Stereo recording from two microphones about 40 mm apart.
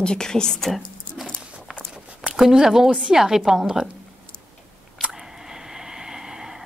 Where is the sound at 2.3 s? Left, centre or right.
Centre.